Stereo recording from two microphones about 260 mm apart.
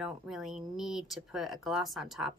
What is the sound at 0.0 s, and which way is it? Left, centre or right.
Speech, centre.